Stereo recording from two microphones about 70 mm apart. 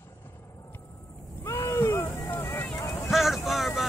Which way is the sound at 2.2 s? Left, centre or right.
Left.